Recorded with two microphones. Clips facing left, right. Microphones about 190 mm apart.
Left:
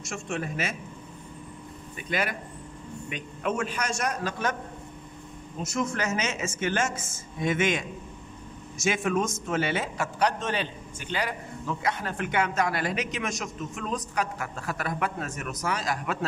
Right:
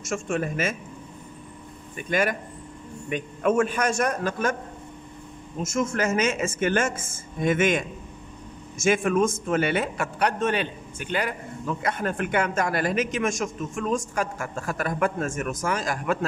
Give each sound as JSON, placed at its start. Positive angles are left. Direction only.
{"t": 0.1, "sound": "speech", "side_deg": -50}
{"t": 2.0, "sound": "speech", "side_deg": -45}
{"t": 5.6, "sound": "a man's voice", "side_deg": -50}